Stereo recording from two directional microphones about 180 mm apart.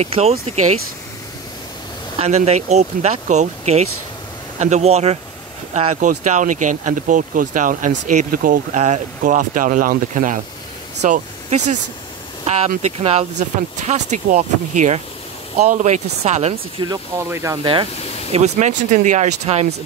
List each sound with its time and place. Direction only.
0.0 s speech: 35° right (ahead or behind)
2.1 s speech: 35° right (ahead or behind)
5.9 s speech: 45° right (ahead or behind)
16.8 s speech: 15° right (ahead or behind)
18.3 s speech: 40° right (ahead or behind)